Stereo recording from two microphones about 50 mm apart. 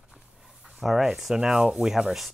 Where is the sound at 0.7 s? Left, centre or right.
Centre.